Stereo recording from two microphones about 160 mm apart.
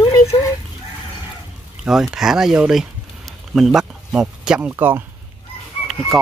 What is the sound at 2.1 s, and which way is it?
Speech, 5° right (ahead or behind).